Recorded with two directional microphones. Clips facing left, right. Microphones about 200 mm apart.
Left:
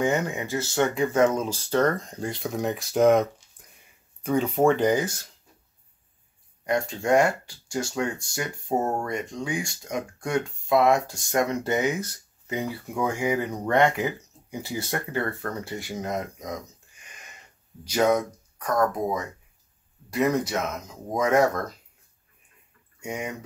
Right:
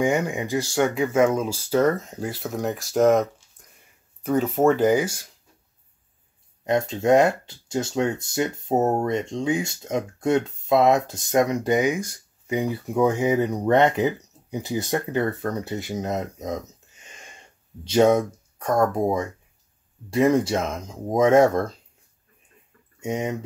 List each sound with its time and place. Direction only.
0.0 s speech: 15° right (ahead or behind)
3.6 s a sound: centre (ahead or behind)
4.2 s speech: centre (ahead or behind)
6.6 s speech: 20° right (ahead or behind)
22.9 s speech: 25° right (ahead or behind)